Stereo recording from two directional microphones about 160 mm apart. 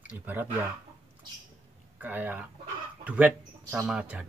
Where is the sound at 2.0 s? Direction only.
10° right (ahead or behind).